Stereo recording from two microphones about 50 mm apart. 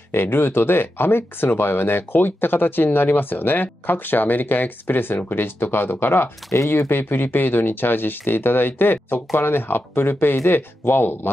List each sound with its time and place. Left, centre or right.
0.1 s speech: left